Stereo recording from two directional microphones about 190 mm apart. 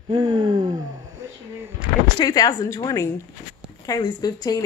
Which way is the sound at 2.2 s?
20° left (ahead or behind).